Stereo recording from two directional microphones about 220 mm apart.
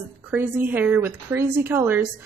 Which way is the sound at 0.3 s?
10° right (ahead or behind).